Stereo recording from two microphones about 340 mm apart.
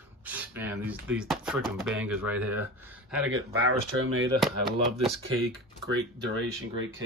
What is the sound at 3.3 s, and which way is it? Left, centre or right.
Speech, right.